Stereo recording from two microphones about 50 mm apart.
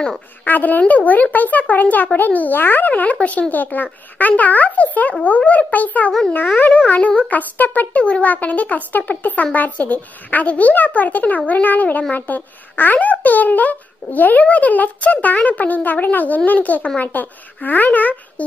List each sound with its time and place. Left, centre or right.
0.5 s a child's voice: left
7.2 s a child's voice: left